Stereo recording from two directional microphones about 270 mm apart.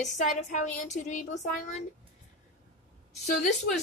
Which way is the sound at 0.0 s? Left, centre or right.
Left.